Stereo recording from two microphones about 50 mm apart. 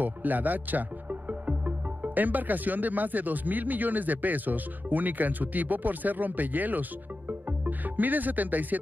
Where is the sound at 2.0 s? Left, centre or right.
Right.